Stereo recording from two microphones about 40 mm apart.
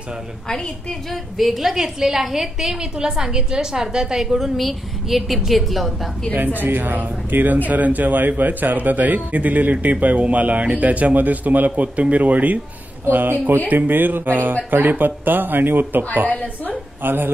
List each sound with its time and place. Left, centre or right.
1.4 s a woman's voice: centre
2.8 s a woman's voice: centre
4.4 s a woman's voice: centre
6.3 s speech: right
13.1 s speech: right
17.0 s speech: right